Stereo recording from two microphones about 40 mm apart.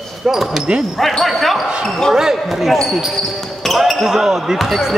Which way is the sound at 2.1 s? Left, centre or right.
Centre.